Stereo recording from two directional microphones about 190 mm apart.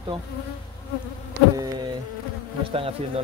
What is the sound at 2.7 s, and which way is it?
Speech, 30° right (ahead or behind).